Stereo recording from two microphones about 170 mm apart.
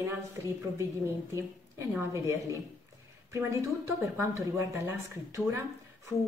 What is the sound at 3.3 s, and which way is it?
Speech, 15° right (ahead or behind).